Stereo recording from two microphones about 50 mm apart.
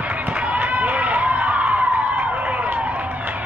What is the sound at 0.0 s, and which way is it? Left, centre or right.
Run, right.